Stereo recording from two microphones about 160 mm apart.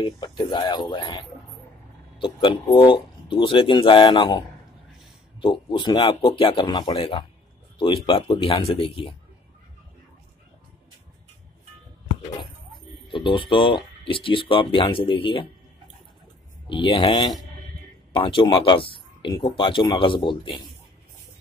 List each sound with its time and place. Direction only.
0.0 s speech: 30° left (ahead or behind)
5.4 s speech: 30° left (ahead or behind)
13.1 s speech: 30° left (ahead or behind)
16.6 s speech: 30° left (ahead or behind)